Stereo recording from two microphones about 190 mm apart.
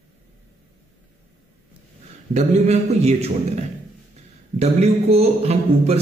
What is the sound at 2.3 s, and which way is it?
Speech, 35° right (ahead or behind).